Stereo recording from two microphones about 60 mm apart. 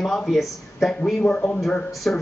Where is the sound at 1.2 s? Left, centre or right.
Centre.